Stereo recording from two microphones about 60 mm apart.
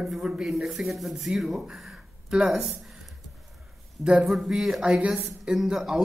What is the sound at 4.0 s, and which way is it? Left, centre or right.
Speech, centre.